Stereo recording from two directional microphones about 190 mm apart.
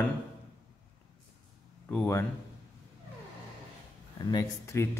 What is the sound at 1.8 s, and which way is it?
Speech, 10° left (ahead or behind).